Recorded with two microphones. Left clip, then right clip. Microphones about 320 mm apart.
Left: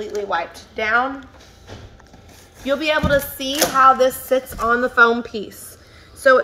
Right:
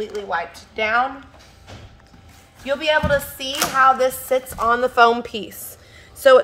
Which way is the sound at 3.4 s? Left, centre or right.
Right.